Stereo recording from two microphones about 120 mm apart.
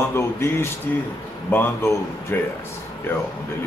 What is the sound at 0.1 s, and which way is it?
Speech, 20° left (ahead or behind).